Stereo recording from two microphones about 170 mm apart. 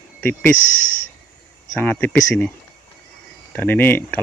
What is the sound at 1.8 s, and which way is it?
Speech, 10° left (ahead or behind).